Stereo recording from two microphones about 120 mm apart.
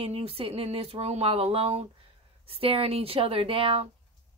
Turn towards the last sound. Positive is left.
turn(degrees=-50)  # may be behind; listen again after turning